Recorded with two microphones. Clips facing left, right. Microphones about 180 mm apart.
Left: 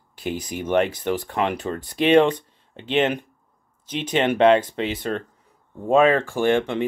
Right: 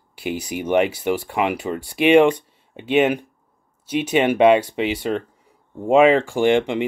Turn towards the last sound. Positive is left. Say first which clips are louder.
# right 3 dB
turn(degrees=-15)  # may be behind; listen again after turning